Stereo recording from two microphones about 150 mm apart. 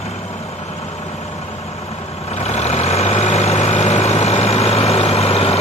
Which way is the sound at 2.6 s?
45° left (ahead or behind).